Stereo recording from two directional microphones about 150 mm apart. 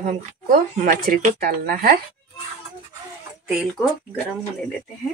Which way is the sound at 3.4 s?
Centre (ahead or behind).